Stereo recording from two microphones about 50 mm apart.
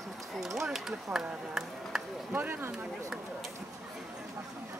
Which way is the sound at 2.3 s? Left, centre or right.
Right.